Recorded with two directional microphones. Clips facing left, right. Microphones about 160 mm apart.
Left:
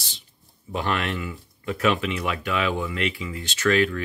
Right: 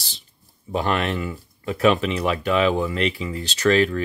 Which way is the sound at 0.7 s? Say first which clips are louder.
Right 4 dB; 35° right (ahead or behind).